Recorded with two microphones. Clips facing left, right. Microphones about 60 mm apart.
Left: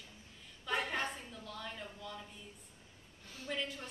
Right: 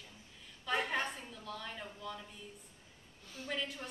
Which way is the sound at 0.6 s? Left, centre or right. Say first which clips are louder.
Right 1 dB; centre.